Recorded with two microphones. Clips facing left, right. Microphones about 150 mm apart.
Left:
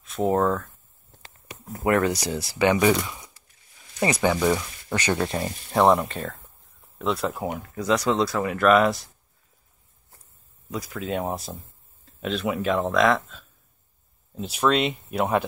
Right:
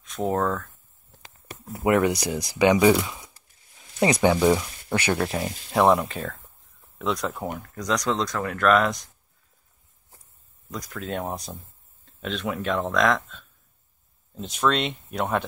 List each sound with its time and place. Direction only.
0.0 s speech: centre (ahead or behind)
1.9 s speech: 15° right (ahead or behind); by 9.1 s 5° left (ahead or behind)
10.7 s speech: 5° left (ahead or behind)